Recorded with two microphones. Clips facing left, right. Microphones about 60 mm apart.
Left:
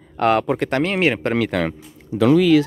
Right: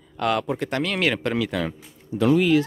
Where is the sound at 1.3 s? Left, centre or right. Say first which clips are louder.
Left 5 dB; left.